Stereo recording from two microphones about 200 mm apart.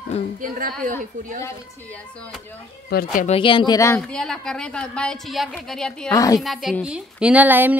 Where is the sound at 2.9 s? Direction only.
45° left (ahead or behind).